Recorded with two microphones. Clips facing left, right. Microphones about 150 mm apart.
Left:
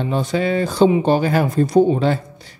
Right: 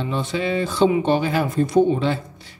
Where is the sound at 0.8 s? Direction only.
30° left (ahead or behind).